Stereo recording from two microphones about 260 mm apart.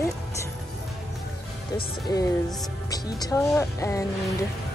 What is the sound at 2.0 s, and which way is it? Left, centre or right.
Speech, centre.